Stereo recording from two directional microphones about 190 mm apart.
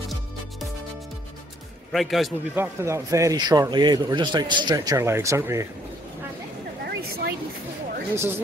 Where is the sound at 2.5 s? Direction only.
15° right (ahead or behind).